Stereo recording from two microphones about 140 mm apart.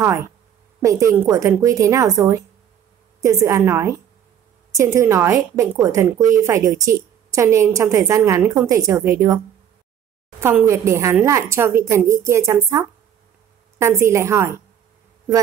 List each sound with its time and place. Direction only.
0.8 s a woman's voice: 20° right (ahead or behind)
10.4 s a woman's voice: 15° right (ahead or behind)